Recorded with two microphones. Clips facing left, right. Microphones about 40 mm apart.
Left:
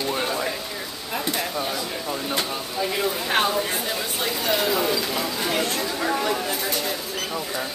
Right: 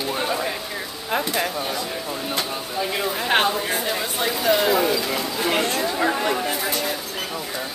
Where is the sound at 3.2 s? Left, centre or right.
Right.